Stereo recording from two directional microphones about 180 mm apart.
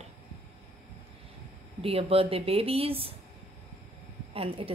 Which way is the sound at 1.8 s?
30° right (ahead or behind).